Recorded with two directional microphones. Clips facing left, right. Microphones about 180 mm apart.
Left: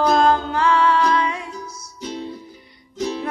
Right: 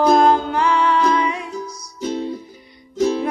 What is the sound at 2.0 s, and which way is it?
Music, 50° right (ahead or behind).